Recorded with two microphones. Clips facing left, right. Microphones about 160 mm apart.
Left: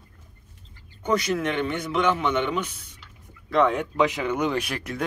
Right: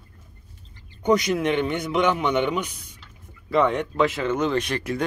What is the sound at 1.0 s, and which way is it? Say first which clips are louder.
A man's voice: right 4 dB; 20° right (ahead or behind).